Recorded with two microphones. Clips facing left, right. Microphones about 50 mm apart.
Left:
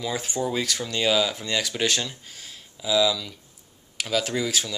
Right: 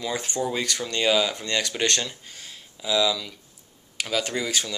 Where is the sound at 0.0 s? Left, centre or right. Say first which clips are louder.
Even; centre.